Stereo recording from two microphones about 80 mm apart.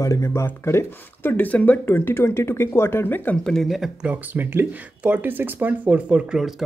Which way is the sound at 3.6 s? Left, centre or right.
Centre.